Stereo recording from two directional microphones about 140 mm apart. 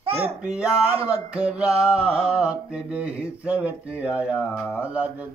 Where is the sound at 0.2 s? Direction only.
5° right (ahead or behind).